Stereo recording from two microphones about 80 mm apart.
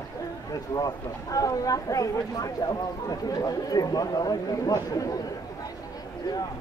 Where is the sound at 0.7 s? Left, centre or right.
Left.